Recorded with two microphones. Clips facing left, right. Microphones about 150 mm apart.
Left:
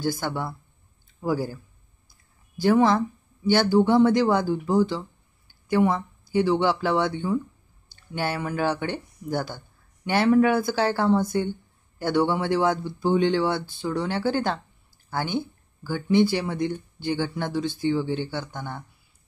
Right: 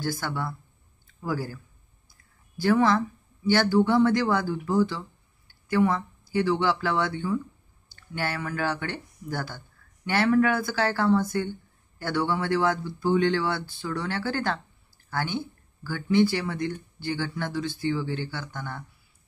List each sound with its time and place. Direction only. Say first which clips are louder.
0.0 s speech: left 3 dB; 20° left (ahead or behind)